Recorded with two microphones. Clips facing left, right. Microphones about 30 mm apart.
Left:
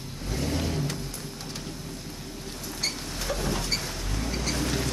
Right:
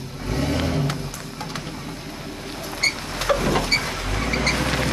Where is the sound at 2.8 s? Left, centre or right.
Right.